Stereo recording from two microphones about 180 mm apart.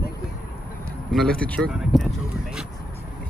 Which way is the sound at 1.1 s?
5° left (ahead or behind).